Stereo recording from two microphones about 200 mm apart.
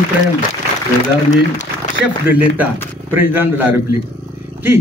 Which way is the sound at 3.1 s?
10° right (ahead or behind).